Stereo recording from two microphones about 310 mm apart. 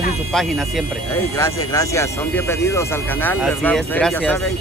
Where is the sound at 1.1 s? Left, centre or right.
Centre.